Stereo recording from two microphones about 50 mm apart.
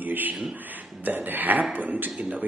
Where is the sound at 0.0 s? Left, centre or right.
Right.